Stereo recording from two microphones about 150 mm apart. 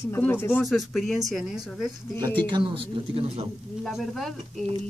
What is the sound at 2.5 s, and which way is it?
Speech, 35° right (ahead or behind).